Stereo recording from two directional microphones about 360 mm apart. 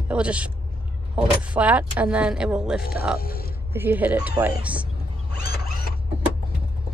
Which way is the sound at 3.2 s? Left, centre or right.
Left.